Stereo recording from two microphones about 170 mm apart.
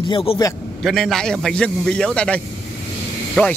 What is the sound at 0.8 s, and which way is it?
Speech, centre (ahead or behind).